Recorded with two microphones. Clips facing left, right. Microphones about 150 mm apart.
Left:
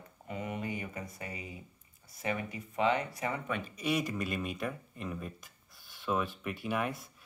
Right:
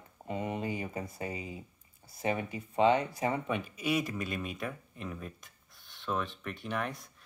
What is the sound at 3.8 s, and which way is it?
Speech, centre (ahead or behind).